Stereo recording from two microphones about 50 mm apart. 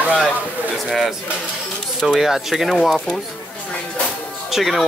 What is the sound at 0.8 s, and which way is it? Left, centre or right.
Speech, centre.